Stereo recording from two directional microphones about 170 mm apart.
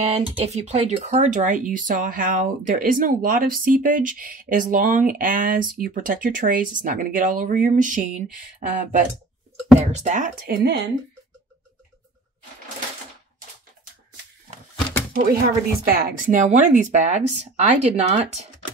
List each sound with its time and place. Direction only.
0.1 s speech: 40° right (ahead or behind)
9.8 s speech: 45° right (ahead or behind); by 10.9 s 80° right
15.1 s speech: 55° right (ahead or behind); by 18.5 s 40° right (ahead or behind)